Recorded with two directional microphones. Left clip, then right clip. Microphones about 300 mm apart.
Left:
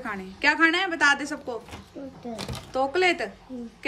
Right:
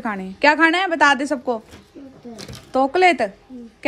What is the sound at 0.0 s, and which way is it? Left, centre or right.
A woman's voice, centre.